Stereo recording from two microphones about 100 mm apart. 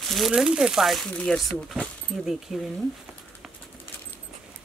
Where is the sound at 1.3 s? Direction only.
Centre (ahead or behind).